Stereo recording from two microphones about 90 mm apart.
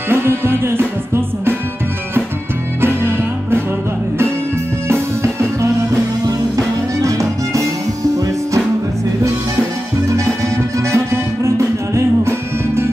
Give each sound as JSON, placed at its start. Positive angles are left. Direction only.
{"t": 0.1, "sound": "music", "side_deg": -25}
{"t": 2.8, "sound": "music", "side_deg": -25}
{"t": 6.2, "sound": "music", "side_deg": -35}
{"t": 10.0, "sound": "music", "side_deg": -35}